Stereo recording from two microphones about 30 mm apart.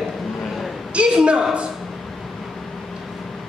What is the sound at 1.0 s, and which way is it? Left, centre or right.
Speech, right.